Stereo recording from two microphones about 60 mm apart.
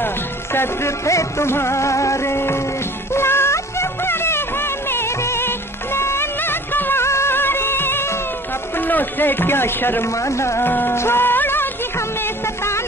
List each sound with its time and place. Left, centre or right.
0.0 s music: left
8.7 s speech: left
10.1 s speech: left
10.6 s music: left